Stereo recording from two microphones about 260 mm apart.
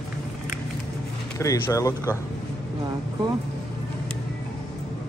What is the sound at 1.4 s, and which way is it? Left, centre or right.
Speech, centre.